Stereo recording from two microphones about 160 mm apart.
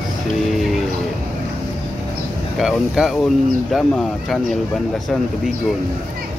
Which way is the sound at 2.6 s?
Centre (ahead or behind).